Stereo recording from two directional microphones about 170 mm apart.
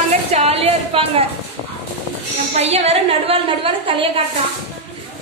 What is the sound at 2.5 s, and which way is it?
A woman's voice, 40° right (ahead or behind).